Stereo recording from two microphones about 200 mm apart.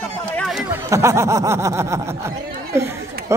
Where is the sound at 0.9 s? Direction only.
15° right (ahead or behind).